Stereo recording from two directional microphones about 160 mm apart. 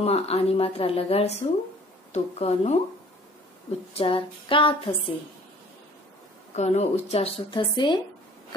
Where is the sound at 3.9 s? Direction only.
35° left (ahead or behind).